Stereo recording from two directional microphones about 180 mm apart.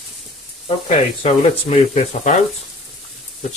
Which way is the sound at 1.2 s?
35° left (ahead or behind).